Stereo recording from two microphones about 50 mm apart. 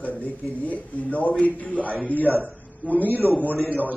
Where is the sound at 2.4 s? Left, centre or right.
Left.